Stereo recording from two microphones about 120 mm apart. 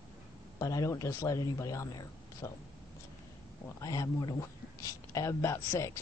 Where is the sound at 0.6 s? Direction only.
30° left (ahead or behind).